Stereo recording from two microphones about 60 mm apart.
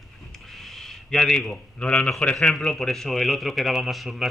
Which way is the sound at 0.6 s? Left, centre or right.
Centre.